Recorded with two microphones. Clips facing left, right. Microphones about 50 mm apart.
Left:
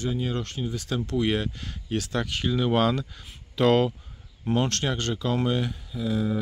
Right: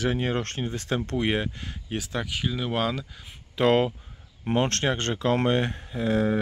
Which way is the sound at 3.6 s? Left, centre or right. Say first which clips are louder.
Even; right.